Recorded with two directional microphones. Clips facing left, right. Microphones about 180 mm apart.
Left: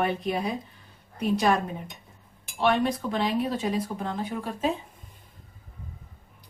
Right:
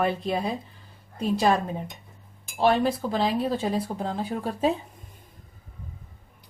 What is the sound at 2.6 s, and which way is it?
Speech, 35° right (ahead or behind).